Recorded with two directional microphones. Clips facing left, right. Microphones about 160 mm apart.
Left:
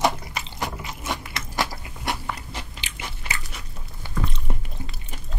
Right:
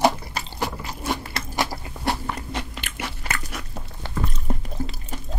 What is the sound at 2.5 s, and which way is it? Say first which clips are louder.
Biting: right 6 dB; 60° right (ahead or behind).